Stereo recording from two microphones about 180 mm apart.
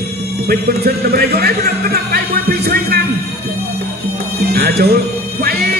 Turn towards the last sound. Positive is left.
turn(degrees=-60)  # may be behind; listen again after turning